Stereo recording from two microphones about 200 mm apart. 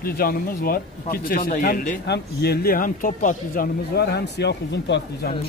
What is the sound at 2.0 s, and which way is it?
A man's voice, 55° left (ahead or behind).